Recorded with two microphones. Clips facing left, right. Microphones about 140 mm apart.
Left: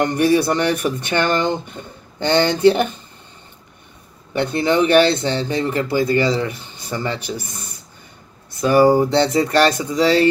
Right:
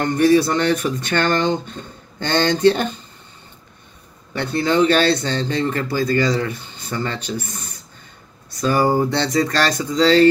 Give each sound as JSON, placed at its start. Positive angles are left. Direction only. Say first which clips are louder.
{"t": 0.1, "sound": "speech", "louder": "right 1 dB", "side_deg": 15}
{"t": 4.4, "sound": "speech", "louder": "even", "side_deg": 15}